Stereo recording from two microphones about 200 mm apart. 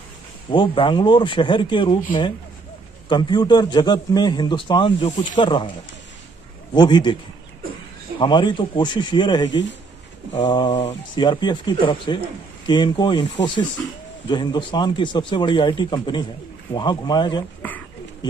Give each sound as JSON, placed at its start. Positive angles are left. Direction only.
{"t": 0.5, "sound": "a man's voice", "side_deg": 25}
{"t": 3.1, "sound": "a man's voice", "side_deg": 20}
{"t": 6.7, "sound": "a man's voice", "side_deg": 20}
{"t": 8.2, "sound": "a man's voice", "side_deg": 20}
{"t": 10.7, "sound": "a man's voice", "side_deg": 35}
{"t": 17.6, "sound": "a sound", "side_deg": 10}